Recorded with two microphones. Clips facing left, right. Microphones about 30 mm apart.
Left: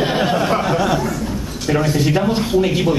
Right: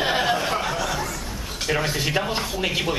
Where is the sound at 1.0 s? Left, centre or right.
Centre.